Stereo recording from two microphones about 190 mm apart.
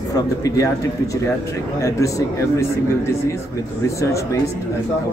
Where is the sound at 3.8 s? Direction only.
15° left (ahead or behind).